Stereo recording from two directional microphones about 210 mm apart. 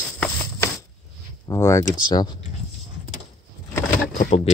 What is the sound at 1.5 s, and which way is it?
Speech, 15° left (ahead or behind).